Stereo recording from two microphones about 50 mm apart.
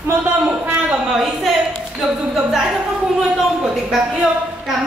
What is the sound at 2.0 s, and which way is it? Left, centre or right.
Speech, centre.